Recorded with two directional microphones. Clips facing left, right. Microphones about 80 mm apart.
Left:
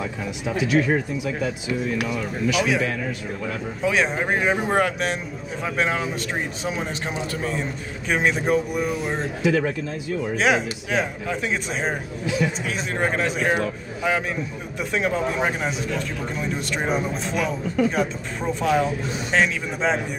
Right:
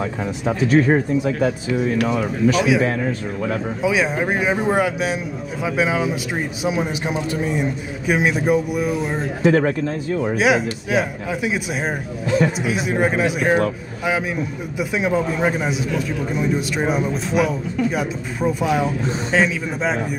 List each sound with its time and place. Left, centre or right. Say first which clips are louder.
0.0 s speech: right 5 dB; right
2.8 s speech: right 5 dB; right
3.8 s a man's voice: right 2 dB; centre
9.4 s speech: right 6 dB; right
10.3 s a man's voice: right 2 dB; centre
12.3 s speech: right 6 dB; right
12.6 s a man's voice: right 5 dB; centre